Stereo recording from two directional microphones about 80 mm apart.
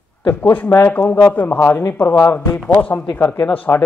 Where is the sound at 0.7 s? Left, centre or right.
Left.